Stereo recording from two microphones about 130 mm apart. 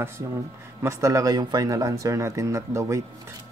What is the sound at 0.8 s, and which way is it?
Speech, 25° right (ahead or behind).